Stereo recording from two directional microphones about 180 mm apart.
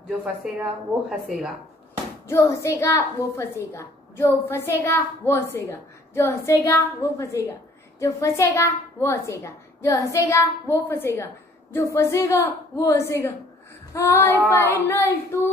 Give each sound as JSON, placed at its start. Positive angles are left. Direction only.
{"t": 0.2, "sound": "a woman's voice", "side_deg": -10}
{"t": 2.2, "sound": "a woman's voice", "side_deg": 15}